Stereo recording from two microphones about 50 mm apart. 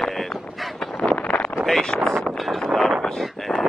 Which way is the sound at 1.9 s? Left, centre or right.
Centre.